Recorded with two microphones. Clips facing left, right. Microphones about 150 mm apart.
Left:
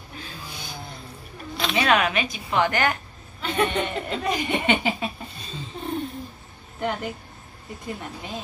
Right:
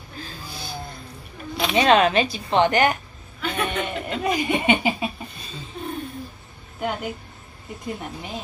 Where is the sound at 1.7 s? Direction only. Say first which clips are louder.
Right 5 dB; 30° right (ahead or behind).